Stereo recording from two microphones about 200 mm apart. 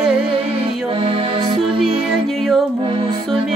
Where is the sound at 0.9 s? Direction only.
25° right (ahead or behind).